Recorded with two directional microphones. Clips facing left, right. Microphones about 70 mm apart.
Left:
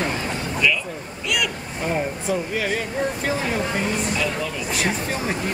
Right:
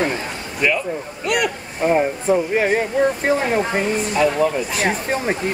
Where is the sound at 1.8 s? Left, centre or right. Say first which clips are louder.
Right 7 dB; right.